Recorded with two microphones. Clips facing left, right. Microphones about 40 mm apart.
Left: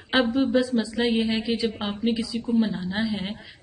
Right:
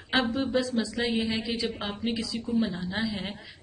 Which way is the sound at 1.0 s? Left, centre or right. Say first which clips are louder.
Left 6 dB; left.